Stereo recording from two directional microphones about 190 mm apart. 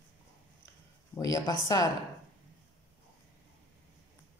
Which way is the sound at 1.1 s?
20° left (ahead or behind).